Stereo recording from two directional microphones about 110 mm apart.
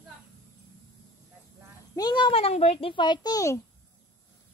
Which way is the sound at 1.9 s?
40° left (ahead or behind).